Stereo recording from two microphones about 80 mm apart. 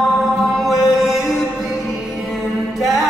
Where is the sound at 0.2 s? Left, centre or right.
Centre.